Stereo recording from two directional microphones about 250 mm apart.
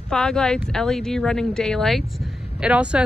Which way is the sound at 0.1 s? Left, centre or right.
Centre.